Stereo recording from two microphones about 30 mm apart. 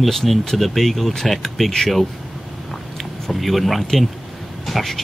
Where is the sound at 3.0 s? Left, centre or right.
Centre.